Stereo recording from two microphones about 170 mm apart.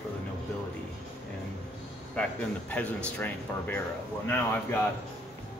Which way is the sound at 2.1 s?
5° left (ahead or behind).